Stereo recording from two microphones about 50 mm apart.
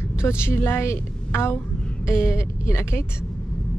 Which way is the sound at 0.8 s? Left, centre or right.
Left.